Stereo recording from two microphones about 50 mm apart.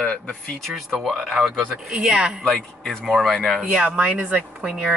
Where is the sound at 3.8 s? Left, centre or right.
Right.